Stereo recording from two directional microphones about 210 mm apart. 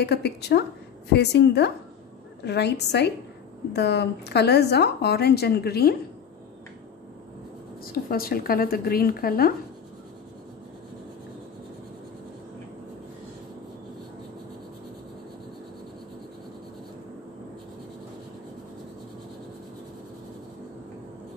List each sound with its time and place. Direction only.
0.0 s a woman's voice: 50° left (ahead or behind)
7.8 s a woman's voice: 45° left (ahead or behind)